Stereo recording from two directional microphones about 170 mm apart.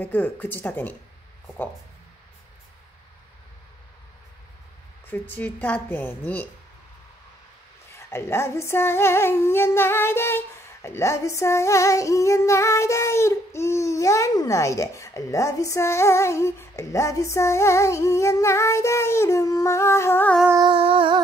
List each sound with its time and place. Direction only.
0.0 s female singing: 10° left (ahead or behind)
5.1 s female singing: 10° left (ahead or behind)
8.1 s female singing: 15° left (ahead or behind)
20.6 s a sound: 30° right (ahead or behind)